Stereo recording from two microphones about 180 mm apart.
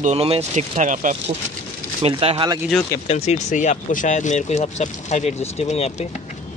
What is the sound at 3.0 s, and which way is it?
Speech, 35° left (ahead or behind).